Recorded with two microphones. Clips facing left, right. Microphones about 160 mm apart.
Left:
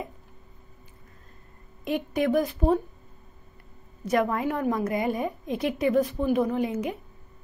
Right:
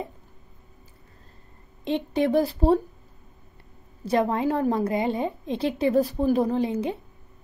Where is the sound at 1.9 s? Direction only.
25° right (ahead or behind).